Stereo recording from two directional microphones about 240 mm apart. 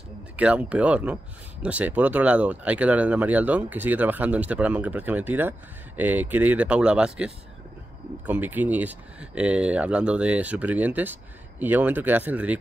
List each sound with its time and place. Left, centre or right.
0.4 s speech: centre